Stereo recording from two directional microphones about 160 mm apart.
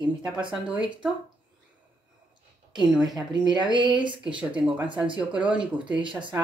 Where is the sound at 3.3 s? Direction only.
30° right (ahead or behind).